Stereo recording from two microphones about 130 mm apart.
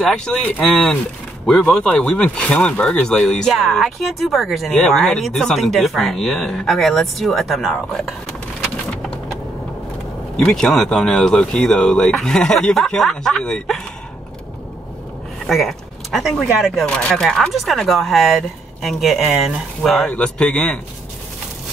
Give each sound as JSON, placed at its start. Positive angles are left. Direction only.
{"t": 0.0, "sound": "speech", "side_deg": 5}
{"t": 10.3, "sound": "speech", "side_deg": 5}
{"t": 15.4, "sound": "speech", "side_deg": 0}